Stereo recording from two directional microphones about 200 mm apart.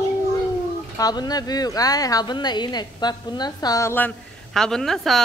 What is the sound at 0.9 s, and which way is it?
A woman's voice, 20° left (ahead or behind).